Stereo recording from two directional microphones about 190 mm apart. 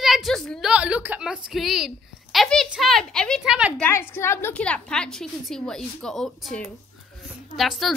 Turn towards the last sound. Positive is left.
turn(degrees=0)  # may be behind; listen again after turning